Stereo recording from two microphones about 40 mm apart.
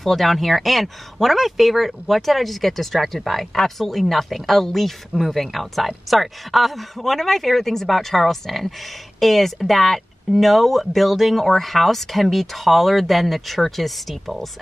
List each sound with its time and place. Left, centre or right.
0.0 s speech: centre